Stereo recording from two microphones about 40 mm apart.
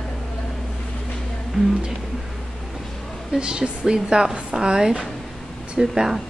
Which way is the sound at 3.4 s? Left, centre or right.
Right.